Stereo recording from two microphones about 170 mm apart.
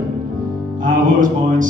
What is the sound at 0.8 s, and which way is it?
Speech, 50° right (ahead or behind).